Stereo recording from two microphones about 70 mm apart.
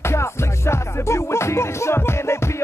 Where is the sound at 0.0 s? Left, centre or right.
Left.